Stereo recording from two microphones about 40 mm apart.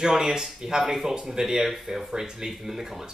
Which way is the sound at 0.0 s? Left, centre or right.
Centre.